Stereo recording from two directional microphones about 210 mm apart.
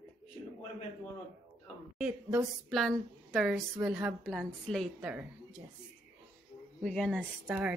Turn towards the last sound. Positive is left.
turn(degrees=-5)  # may be behind; listen again after turning